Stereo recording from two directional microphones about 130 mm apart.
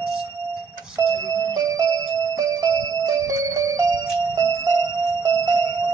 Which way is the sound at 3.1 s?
25° right (ahead or behind).